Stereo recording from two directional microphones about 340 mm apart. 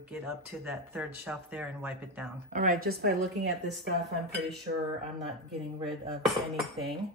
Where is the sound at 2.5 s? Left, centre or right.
Right.